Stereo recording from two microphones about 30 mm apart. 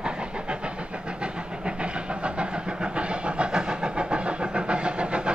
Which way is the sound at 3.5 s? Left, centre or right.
Right.